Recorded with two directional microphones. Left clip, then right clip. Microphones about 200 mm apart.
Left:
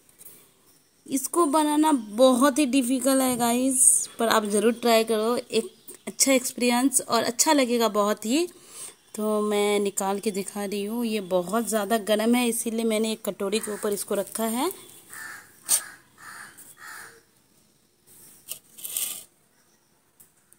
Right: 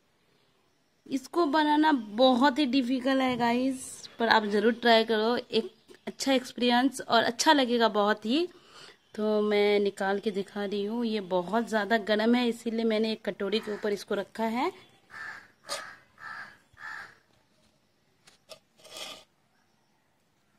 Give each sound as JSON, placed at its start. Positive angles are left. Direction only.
{"t": 1.0, "sound": "a woman's voice", "side_deg": 15}
{"t": 12.2, "sound": "a woman's voice", "side_deg": -30}
{"t": 12.9, "sound": "a woman's voice", "side_deg": 10}